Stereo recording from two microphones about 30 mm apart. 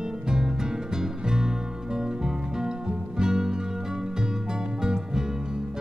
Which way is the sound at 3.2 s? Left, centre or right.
Right.